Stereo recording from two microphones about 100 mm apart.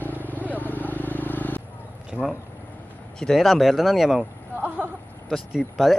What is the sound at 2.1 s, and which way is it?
Speech, 5° right (ahead or behind).